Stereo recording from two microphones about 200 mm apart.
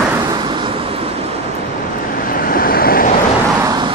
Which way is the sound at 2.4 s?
45° left (ahead or behind).